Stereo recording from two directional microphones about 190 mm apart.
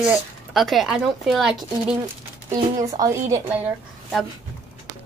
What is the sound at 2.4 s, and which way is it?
Speech, 20° right (ahead or behind).